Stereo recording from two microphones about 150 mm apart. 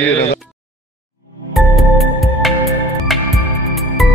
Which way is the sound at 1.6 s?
Centre (ahead or behind).